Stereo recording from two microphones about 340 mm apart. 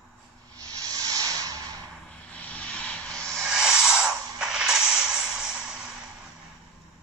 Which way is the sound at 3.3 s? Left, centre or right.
Centre.